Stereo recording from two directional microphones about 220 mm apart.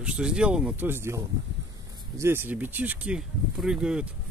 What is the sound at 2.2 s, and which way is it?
Speech, 10° right (ahead or behind).